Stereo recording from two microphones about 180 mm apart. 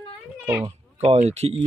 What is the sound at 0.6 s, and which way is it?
Speech, 35° right (ahead or behind).